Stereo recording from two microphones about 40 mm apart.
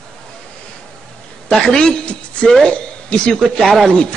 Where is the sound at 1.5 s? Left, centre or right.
Centre.